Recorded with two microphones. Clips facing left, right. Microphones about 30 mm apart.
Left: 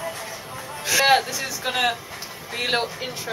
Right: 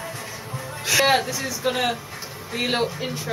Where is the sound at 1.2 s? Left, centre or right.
Left.